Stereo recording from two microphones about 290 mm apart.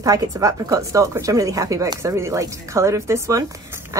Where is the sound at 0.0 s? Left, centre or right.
Centre.